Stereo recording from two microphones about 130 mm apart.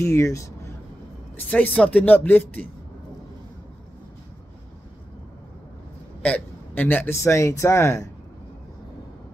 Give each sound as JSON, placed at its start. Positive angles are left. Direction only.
{"t": 0.0, "sound": "speech", "side_deg": 20}
{"t": 1.3, "sound": "speech", "side_deg": 10}
{"t": 6.2, "sound": "speech", "side_deg": 15}